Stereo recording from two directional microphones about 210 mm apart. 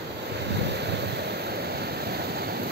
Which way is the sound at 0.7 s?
55° right (ahead or behind).